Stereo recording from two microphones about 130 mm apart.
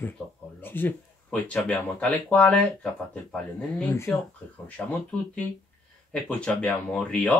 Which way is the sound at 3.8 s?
25° left (ahead or behind).